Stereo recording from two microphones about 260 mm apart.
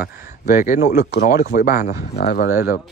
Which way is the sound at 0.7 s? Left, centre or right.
Left.